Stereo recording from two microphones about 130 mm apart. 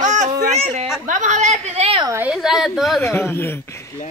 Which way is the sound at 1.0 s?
80° right.